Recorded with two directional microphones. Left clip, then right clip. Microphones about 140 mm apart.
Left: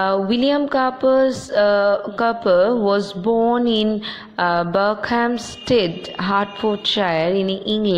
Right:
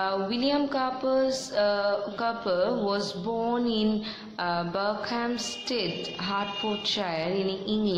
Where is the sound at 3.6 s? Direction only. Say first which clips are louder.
Left 9 dB; 50° left (ahead or behind).